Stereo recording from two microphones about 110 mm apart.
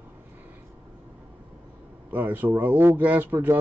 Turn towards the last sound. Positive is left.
turn(degrees=-20)  # may be behind; listen again after turning